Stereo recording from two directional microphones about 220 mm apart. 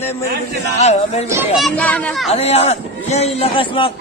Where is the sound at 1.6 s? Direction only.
5° left (ahead or behind).